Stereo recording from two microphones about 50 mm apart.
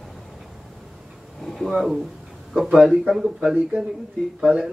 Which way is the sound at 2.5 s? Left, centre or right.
Centre.